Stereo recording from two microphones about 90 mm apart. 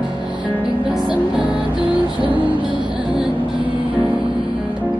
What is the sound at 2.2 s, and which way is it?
Music, 20° right (ahead or behind).